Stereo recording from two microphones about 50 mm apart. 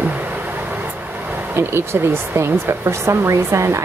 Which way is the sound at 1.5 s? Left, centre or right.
Right.